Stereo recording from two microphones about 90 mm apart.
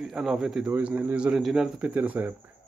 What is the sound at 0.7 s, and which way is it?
Speech, 15° right (ahead or behind).